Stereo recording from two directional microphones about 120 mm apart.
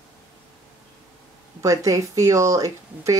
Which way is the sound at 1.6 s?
25° right (ahead or behind).